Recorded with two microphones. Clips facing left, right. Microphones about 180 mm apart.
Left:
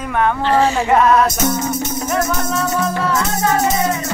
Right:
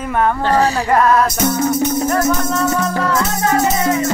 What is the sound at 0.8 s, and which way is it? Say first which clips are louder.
Music: left 1 dB; centre (ahead or behind).